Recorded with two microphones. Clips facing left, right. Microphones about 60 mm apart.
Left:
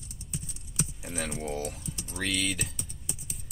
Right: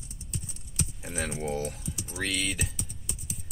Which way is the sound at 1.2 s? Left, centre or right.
Centre.